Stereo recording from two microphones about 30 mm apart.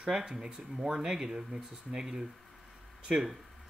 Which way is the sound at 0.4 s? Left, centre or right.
Right.